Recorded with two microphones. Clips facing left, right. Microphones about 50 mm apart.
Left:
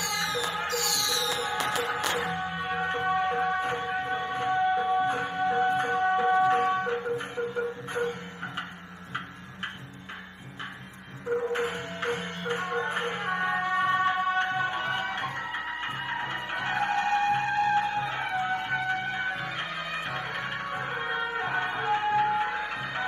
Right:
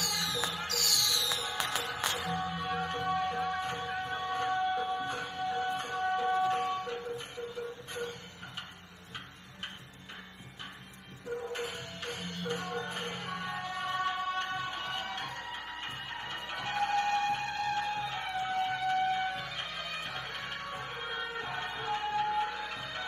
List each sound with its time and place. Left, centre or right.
0.0 s music: left
1.0 s music: left
1.7 s music: left
11.5 s music: left